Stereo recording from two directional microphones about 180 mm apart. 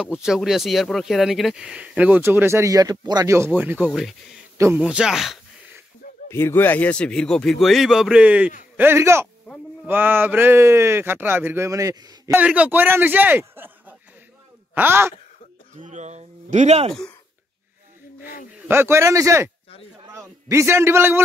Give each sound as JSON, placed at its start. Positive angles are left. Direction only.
{"t": 0.0, "sound": "speech", "side_deg": -5}
{"t": 6.2, "sound": "speech", "side_deg": 15}
{"t": 12.4, "sound": "speech", "side_deg": -5}
{"t": 15.7, "sound": "speech", "side_deg": -40}
{"t": 18.7, "sound": "a man's voice", "side_deg": -15}